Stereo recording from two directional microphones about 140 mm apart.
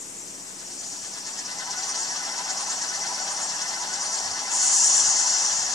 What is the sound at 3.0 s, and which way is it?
Mechanisms, centre (ahead or behind).